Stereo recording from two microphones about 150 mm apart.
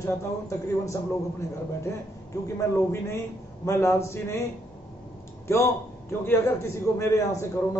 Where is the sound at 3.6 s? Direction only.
20° left (ahead or behind).